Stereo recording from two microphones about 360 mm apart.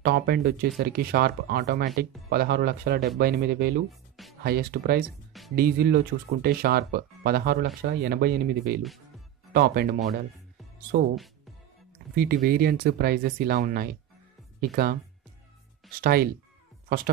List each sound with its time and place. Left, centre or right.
0.0 s speech: right
12.2 s speech: right
16.0 s speech: right